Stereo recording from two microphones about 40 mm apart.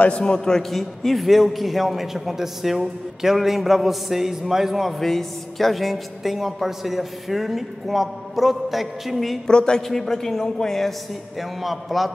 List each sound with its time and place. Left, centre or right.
0.2 s a man's voice: centre
0.6 s a woman's voice: centre
4.9 s a woman's voice: centre
9.5 s a man's voice: left
9.8 s speech: centre
11.3 s a woman's voice: centre